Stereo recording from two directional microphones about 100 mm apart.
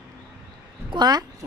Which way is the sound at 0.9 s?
45° right (ahead or behind).